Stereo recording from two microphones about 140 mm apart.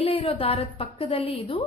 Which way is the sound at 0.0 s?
40° left (ahead or behind).